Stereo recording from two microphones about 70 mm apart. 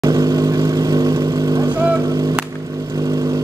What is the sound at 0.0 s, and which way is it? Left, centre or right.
Vehicle, right.